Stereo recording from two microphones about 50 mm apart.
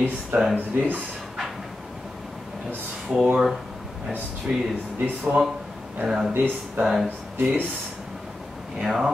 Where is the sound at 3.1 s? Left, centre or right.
Centre.